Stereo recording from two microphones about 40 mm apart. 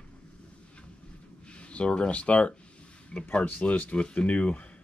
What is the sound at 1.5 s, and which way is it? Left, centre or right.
Speech, left.